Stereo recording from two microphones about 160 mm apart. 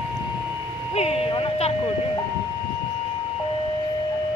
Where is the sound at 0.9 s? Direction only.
40° left (ahead or behind).